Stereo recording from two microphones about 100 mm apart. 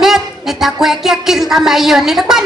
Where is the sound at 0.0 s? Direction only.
5° right (ahead or behind).